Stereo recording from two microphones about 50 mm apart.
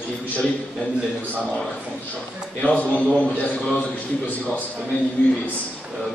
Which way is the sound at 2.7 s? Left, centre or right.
Left.